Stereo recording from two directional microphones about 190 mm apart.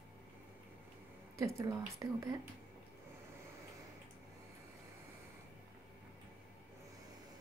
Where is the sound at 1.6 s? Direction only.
15° right (ahead or behind).